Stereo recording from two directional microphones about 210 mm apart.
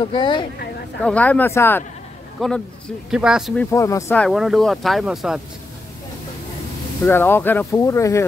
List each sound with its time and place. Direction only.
0.0 s speech: 20° left (ahead or behind)
1.0 s speech: 5° left (ahead or behind)
3.7 s speech: 15° left (ahead or behind); by 5.4 s centre (ahead or behind)
7.1 s speech: 10° left (ahead or behind)